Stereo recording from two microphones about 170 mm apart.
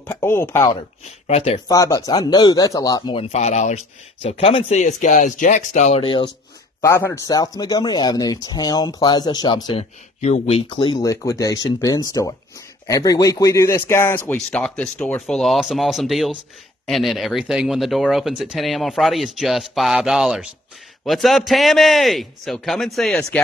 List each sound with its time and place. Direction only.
0.0 s speech: 15° left (ahead or behind)
1.2 s speech: 35° left (ahead or behind)
1.7 s speech: 20° left (ahead or behind)
3.3 s speech: 40° left (ahead or behind)
6.8 s speech: 15° left (ahead or behind)
9.7 s speech: 35° left (ahead or behind); by 23.4 s 5° left (ahead or behind)